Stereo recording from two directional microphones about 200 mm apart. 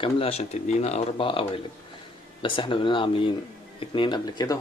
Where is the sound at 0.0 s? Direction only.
30° left (ahead or behind).